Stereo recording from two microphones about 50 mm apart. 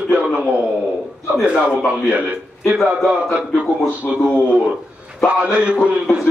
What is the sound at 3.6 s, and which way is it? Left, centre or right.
A man's voice, right.